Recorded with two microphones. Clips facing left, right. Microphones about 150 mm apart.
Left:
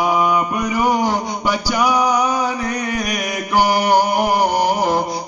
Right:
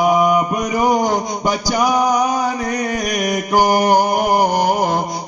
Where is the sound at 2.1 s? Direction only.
40° right (ahead or behind).